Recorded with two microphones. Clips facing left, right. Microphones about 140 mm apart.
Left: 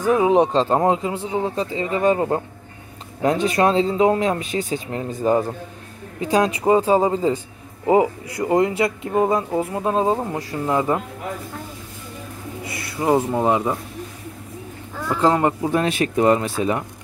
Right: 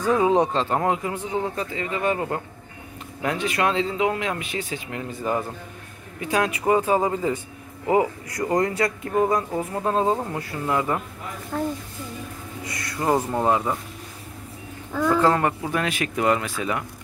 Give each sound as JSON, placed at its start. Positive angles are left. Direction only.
{"t": 0.0, "sound": "speech", "side_deg": 20}
{"t": 0.5, "sound": "speech", "side_deg": 30}
{"t": 12.7, "sound": "speech", "side_deg": 10}
{"t": 15.1, "sound": "speech", "side_deg": 15}